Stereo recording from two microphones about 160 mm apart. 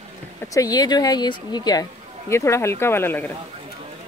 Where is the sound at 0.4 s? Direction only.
25° left (ahead or behind).